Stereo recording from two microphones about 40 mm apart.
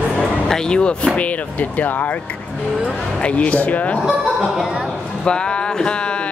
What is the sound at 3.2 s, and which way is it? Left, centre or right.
Speech, left.